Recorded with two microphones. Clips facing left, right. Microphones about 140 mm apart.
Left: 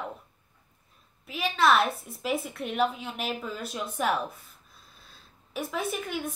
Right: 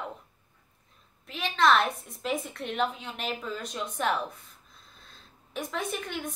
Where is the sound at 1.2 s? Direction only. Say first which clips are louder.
Even; 5° left (ahead or behind).